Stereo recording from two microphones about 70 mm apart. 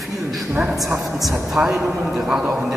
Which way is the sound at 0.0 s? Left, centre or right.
Centre.